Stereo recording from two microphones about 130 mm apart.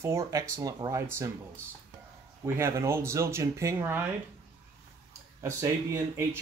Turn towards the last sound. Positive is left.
turn(degrees=-25)  # may be behind; listen again after turning